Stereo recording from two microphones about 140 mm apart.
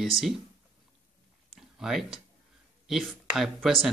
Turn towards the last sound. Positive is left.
turn(degrees=0)  # may be behind; listen again after turning